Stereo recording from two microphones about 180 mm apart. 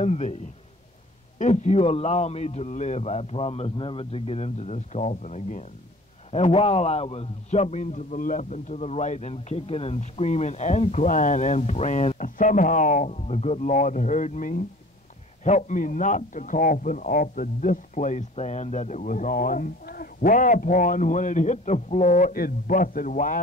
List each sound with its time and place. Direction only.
0.0 s a man's voice: 35° left (ahead or behind)
1.4 s a man's voice: 40° left (ahead or behind)